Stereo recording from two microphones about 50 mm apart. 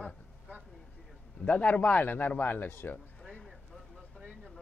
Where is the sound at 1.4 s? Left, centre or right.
Left.